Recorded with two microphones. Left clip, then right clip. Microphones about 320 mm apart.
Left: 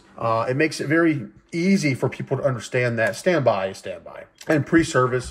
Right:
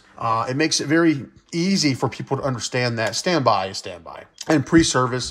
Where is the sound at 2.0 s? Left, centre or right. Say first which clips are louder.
Left 1 dB; centre.